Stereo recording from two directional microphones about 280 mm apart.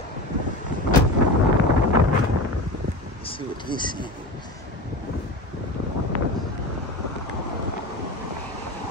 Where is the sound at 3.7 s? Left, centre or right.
Centre.